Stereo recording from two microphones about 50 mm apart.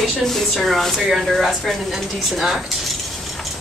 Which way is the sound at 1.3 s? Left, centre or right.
Centre.